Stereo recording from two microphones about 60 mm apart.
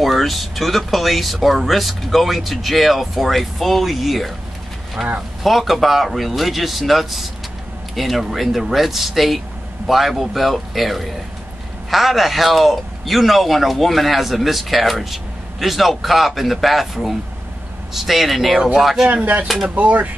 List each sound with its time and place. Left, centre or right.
0.0 s speech: centre
18.6 s speech: centre
19.0 s speech: right
19.4 s speech: centre
19.7 s speech: right